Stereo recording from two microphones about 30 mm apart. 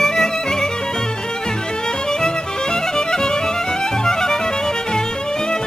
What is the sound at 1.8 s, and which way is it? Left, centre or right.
Music, left.